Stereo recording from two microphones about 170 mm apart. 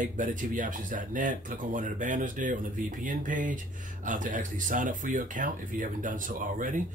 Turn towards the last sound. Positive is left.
turn(degrees=-50)  # may be behind; listen again after turning